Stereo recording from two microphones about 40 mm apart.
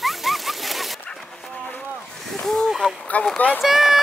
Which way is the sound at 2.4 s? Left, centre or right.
Centre.